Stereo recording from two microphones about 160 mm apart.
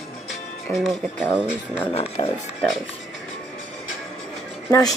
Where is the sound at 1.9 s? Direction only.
40° left (ahead or behind).